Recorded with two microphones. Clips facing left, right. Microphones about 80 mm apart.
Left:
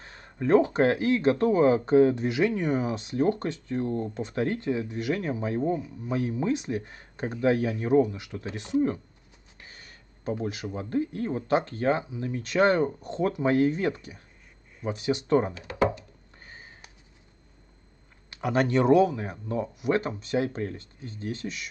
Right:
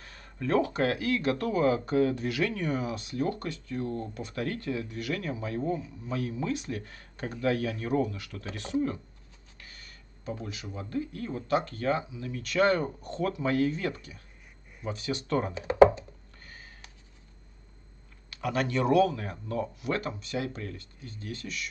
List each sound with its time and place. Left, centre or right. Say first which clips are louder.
0.0 s speech: left 5 dB; left
9.6 s a sound: left 2 dB; left
10.4 s speech: left 7 dB; left
15.5 s speech: right 7 dB; right
16.4 s sniff: left 2 dB; left
18.3 s speech: left 5 dB; left